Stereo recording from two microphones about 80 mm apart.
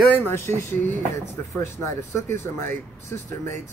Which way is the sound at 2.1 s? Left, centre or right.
Left.